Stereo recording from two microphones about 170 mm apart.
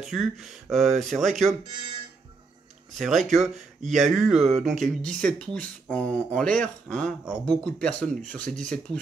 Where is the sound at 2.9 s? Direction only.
Centre (ahead or behind).